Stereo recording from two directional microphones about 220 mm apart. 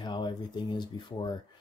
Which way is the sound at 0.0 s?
20° left (ahead or behind).